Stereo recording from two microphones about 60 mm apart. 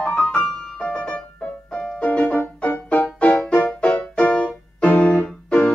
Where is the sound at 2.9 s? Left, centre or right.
Left.